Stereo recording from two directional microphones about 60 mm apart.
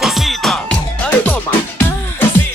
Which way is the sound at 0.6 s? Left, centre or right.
Centre.